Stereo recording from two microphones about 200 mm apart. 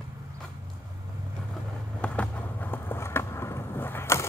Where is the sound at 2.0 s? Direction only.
5° left (ahead or behind).